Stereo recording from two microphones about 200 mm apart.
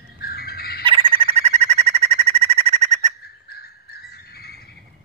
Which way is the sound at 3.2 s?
50° left (ahead or behind).